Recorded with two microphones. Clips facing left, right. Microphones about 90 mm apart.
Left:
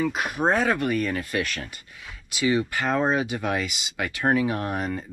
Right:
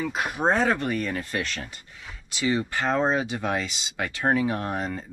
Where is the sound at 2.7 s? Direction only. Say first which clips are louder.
Even; 30° right (ahead or behind).